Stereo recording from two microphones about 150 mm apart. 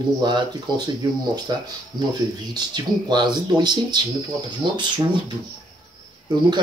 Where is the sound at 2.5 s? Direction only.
30° right (ahead or behind).